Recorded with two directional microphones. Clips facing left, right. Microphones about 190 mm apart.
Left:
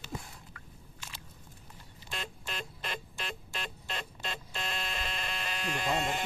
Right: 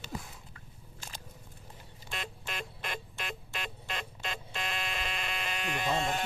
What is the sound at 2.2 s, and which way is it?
Music, 15° right (ahead or behind).